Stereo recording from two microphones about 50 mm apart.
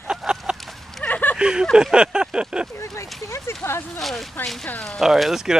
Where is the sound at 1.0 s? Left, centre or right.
Left.